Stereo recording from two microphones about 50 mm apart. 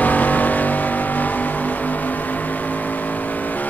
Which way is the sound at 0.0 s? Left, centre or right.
Left.